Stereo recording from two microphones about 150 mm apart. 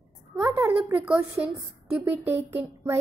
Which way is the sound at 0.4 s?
15° right (ahead or behind).